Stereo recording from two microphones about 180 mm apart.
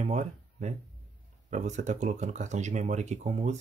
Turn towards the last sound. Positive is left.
turn(degrees=-40)  # may be behind; listen again after turning